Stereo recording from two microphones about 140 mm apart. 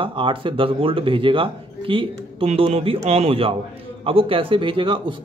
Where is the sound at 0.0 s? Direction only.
35° right (ahead or behind).